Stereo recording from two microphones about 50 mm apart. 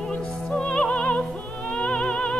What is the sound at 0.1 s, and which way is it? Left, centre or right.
Music, left.